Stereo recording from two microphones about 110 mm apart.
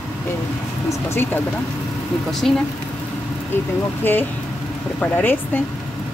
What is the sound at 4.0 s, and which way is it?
Speech, 20° left (ahead or behind).